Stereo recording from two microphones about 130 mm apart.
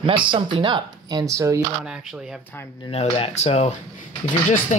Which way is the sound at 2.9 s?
55° left (ahead or behind).